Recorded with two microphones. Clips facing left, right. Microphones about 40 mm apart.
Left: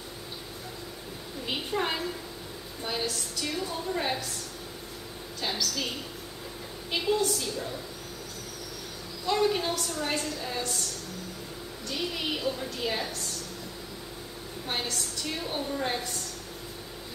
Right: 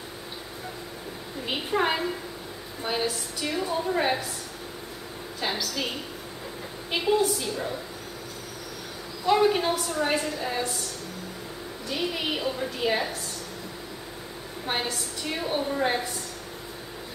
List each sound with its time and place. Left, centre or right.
1.4 s a sound: centre
2.8 s a woman's voice: centre
5.4 s a woman's voice: centre
9.2 s a woman's voice: centre
11.9 s a woman's voice: centre
14.7 s a woman's voice: centre